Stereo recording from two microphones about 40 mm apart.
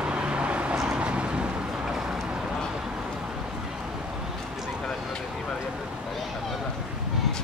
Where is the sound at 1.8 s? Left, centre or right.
Centre.